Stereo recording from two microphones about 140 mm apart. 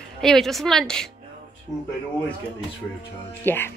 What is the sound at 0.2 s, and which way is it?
Speech, centre (ahead or behind).